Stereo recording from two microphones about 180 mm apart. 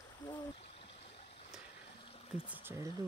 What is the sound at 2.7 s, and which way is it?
Mantra, 15° right (ahead or behind).